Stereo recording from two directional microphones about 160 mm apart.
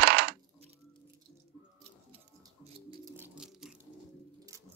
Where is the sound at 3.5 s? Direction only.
5° right (ahead or behind).